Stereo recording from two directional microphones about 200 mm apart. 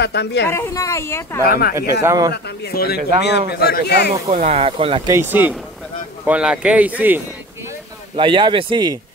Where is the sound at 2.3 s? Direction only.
55° left (ahead or behind).